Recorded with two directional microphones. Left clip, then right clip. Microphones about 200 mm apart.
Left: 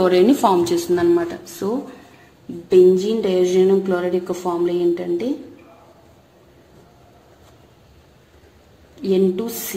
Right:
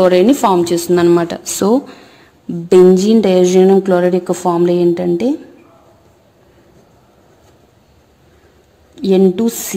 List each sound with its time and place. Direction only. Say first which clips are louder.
0.0 s speech: right 5 dB; 30° right (ahead or behind)
0.9 s speech: right 7 dB; 45° right (ahead or behind)
9.1 s speech: right 6 dB; 55° right (ahead or behind)